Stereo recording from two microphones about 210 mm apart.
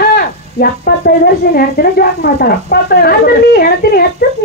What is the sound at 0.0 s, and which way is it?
Speech, 50° left (ahead or behind).